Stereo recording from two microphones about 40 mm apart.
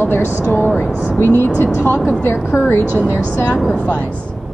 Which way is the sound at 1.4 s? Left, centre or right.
Left.